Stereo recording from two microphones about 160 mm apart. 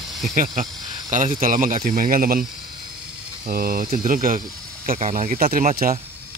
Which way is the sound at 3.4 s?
65° right (ahead or behind).